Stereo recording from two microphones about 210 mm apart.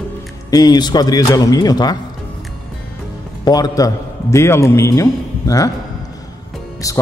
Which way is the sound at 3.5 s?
15° left (ahead or behind).